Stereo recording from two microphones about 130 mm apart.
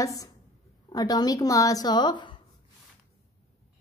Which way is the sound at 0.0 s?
25° left (ahead or behind).